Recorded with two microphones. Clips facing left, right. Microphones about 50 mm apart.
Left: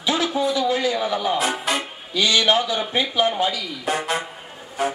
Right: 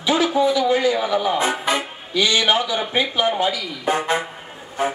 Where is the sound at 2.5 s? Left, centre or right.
Centre.